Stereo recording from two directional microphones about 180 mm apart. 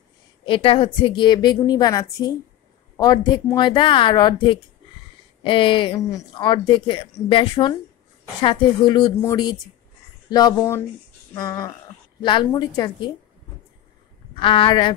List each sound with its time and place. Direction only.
0.5 s a woman's voice: 30° left (ahead or behind)
5.9 s a woman's voice: 15° left (ahead or behind)
14.3 s a woman's voice: 30° left (ahead or behind)